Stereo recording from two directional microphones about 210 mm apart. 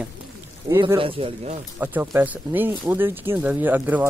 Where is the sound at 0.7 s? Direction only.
20° right (ahead or behind).